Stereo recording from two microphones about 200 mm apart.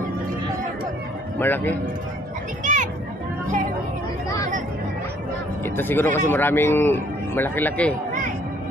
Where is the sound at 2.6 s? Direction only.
40° right (ahead or behind).